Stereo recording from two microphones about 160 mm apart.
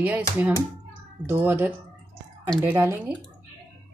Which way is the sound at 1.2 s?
15° right (ahead or behind).